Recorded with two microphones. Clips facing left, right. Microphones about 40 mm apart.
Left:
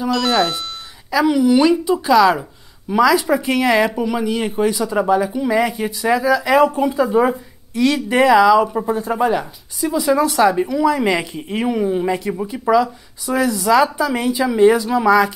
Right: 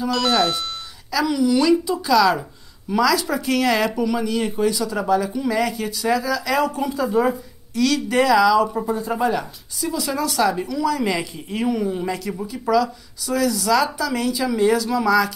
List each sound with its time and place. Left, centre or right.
0.1 s speech: centre
1.1 s speech: left